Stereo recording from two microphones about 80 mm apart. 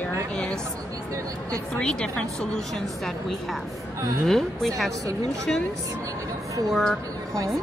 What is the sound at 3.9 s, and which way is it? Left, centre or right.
Speech, right.